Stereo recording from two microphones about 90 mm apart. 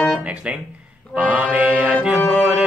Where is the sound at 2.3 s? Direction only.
5° right (ahead or behind).